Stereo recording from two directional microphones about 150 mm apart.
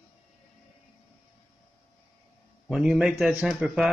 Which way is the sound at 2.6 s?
5° right (ahead or behind).